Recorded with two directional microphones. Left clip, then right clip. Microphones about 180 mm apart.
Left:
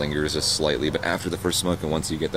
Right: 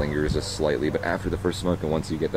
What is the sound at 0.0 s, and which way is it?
Speech, 15° left (ahead or behind).